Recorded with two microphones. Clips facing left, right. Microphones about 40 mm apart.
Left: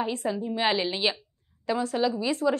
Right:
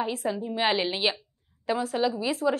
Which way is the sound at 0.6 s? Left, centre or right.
Centre.